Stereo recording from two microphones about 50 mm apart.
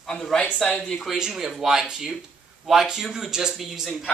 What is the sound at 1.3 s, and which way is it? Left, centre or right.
A man's voice, centre.